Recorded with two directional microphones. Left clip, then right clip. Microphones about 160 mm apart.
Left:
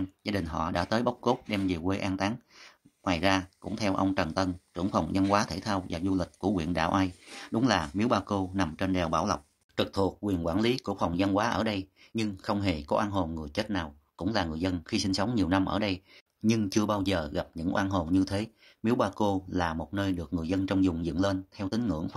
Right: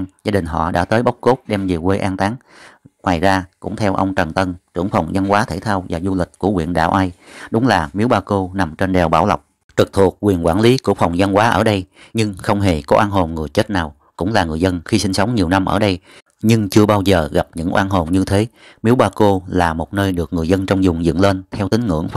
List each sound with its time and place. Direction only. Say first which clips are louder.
0.2 s speech: right 14 dB; 45° right (ahead or behind)